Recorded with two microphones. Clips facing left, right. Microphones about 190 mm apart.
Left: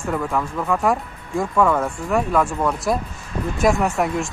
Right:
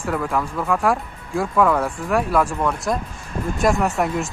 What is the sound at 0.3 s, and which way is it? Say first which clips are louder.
Speech: even; centre (ahead or behind).